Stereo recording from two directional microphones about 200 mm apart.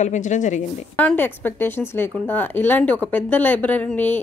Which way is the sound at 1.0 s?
10° left (ahead or behind).